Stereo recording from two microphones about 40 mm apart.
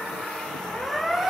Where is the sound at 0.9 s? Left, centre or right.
Centre.